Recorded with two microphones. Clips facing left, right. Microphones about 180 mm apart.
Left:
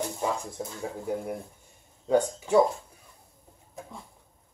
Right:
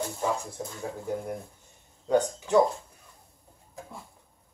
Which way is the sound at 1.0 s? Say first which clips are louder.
Left 1 dB; 5° left (ahead or behind).